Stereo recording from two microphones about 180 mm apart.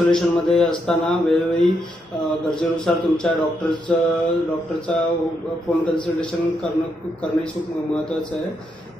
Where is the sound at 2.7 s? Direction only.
5° left (ahead or behind).